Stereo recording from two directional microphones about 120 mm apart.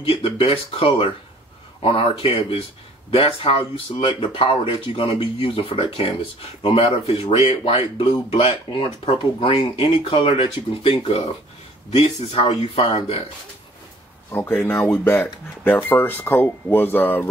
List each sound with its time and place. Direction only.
0.0 s speech: 50° left (ahead or behind)
14.3 s speech: 15° left (ahead or behind)